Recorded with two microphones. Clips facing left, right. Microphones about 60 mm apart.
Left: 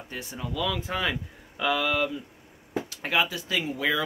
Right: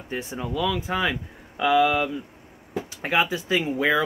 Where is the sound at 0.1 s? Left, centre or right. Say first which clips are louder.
Right 7 dB; right.